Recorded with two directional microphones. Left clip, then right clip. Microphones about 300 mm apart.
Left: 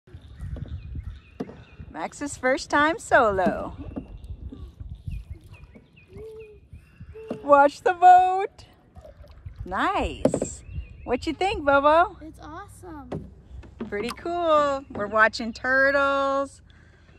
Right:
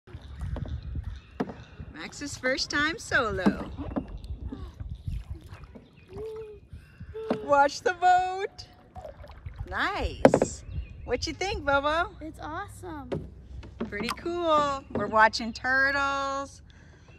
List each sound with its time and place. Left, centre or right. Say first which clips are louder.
2.0 s speech: left 7 dB; centre
7.4 s speech: left 6 dB; centre
9.7 s speech: left 5 dB; centre
10.2 s speech: right 7 dB; centre
11.1 s speech: left 5 dB; centre